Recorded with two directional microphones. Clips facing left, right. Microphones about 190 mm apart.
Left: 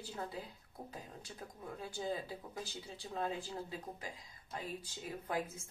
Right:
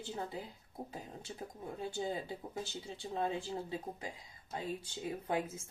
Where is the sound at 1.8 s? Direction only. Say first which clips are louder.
Right 2 dB; 25° right (ahead or behind).